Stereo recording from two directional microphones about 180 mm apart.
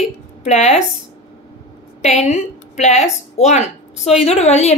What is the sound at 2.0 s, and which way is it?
A woman's voice, 40° left (ahead or behind).